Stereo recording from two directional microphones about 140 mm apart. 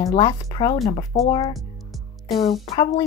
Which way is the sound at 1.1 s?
55° left (ahead or behind).